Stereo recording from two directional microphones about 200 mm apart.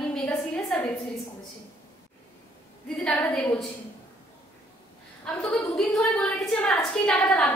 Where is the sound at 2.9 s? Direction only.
5° left (ahead or behind).